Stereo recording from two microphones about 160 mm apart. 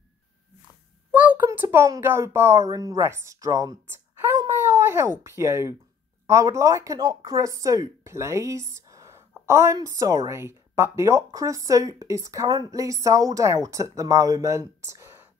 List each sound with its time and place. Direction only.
1.1 s a child's voice: 10° right (ahead or behind)
4.2 s a sound: 15° right (ahead or behind)
6.2 s speech: 20° right (ahead or behind)